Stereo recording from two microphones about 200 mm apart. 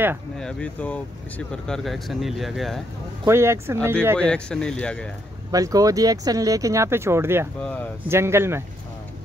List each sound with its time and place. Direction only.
0.4 s speech: 5° left (ahead or behind)
3.3 s speech: 15° right (ahead or behind)
4.2 s speech: 5° left (ahead or behind)
5.5 s speech: 15° right (ahead or behind)
7.6 s speech: 5° left (ahead or behind)
8.1 s speech: 10° right (ahead or behind)